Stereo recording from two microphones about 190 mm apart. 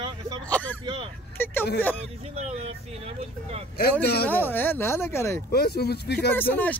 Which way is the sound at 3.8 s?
55° left (ahead or behind).